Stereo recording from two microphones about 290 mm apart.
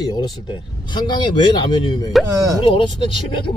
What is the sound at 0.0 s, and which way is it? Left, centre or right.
A man's voice, centre.